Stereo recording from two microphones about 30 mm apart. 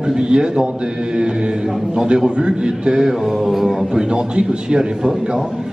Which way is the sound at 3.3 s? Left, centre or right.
Centre.